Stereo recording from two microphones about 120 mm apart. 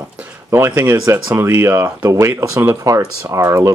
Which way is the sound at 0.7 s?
20° right (ahead or behind).